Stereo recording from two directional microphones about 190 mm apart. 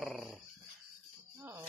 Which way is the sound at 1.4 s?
10° right (ahead or behind).